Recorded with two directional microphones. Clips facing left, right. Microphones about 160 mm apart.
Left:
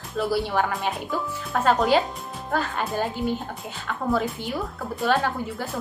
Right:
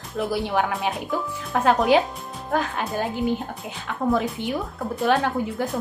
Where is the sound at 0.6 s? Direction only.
5° right (ahead or behind).